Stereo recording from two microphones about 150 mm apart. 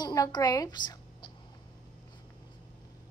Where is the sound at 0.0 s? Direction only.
25° left (ahead or behind).